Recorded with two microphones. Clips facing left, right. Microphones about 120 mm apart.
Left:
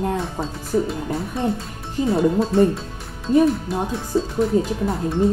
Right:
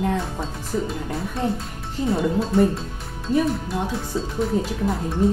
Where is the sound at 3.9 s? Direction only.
Centre (ahead or behind).